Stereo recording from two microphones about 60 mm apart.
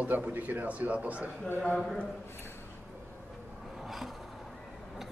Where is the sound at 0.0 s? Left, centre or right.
Right.